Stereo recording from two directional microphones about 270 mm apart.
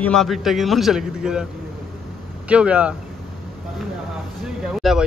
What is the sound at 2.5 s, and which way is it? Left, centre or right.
Speech, centre.